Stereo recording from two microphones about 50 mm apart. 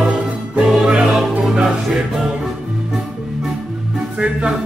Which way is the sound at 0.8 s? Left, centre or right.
Centre.